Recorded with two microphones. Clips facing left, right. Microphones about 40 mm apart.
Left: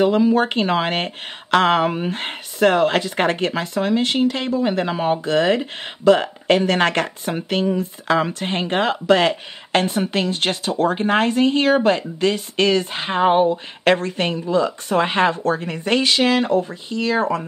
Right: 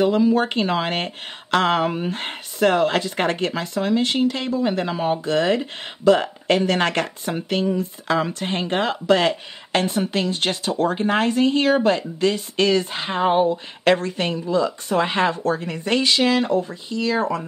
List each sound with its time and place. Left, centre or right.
0.0 s speech: left
4.8 s speech: left
5.2 s speech: centre